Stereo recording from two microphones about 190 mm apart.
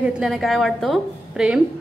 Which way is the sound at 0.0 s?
Centre (ahead or behind).